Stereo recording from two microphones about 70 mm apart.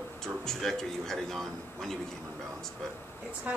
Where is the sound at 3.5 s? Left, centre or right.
Centre.